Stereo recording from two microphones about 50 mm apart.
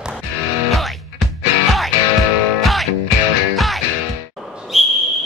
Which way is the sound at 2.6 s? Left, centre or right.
Centre.